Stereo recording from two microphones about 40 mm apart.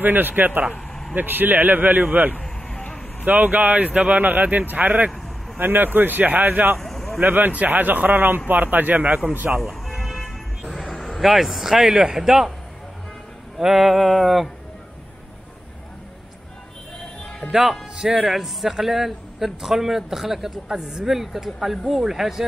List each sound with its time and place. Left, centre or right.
0.0 s a man's voice: right
3.3 s a man's voice: right
3.8 s speech: right
4.1 s a man's voice: right
5.6 s a man's voice: right
6.8 s a sound: centre
7.2 s a man's voice: right
8.5 s a man's voice: right
9.6 s vehicle: centre
11.1 s speech: centre
13.6 s a man's voice: centre
17.5 s a man's voice: centre